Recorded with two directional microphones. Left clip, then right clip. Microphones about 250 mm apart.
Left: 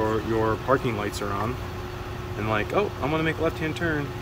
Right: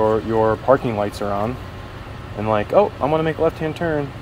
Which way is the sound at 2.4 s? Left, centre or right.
Right.